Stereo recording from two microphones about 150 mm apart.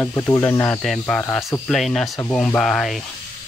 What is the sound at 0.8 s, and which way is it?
Speech, 5° left (ahead or behind).